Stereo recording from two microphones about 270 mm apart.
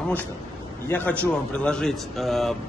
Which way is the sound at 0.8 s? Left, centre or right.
Centre.